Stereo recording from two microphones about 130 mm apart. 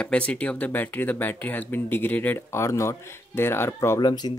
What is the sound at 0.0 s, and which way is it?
Speech, 10° left (ahead or behind).